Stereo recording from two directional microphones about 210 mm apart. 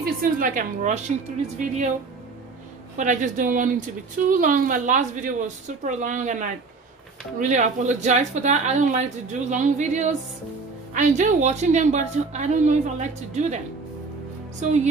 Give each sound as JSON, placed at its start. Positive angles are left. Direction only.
{"t": 0.0, "sound": "speech", "side_deg": -40}
{"t": 3.0, "sound": "speech", "side_deg": -35}
{"t": 14.6, "sound": "speech", "side_deg": -35}